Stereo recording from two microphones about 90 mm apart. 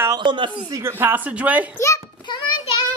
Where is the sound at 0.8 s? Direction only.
25° right (ahead or behind).